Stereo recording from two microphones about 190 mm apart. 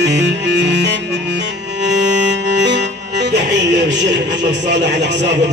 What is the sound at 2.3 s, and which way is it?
Music, 65° right (ahead or behind).